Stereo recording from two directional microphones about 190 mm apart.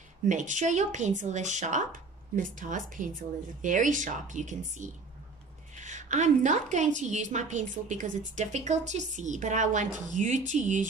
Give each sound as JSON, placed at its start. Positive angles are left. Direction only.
{"t": 0.3, "sound": "speech", "side_deg": -40}